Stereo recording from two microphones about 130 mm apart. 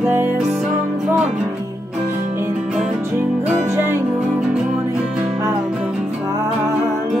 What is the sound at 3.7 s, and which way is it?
Music, 20° right (ahead or behind).